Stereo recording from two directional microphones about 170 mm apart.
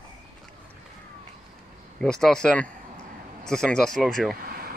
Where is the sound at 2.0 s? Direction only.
5° left (ahead or behind).